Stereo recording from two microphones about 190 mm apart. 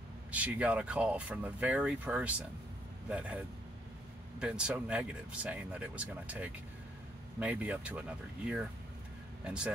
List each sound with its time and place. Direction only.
0.3 s speech: 5° right (ahead or behind)